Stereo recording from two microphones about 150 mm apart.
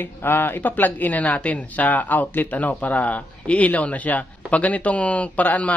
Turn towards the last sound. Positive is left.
turn(degrees=10)  # may be behind; listen again after turning